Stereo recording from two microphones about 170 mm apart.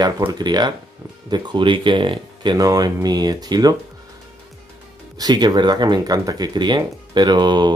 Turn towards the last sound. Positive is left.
turn(degrees=-25)  # may be behind; listen again after turning